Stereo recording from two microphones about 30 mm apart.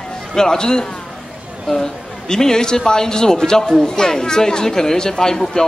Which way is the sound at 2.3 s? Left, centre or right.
Centre.